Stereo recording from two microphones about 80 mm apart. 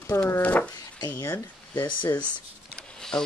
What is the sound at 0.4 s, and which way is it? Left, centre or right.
Speech, centre.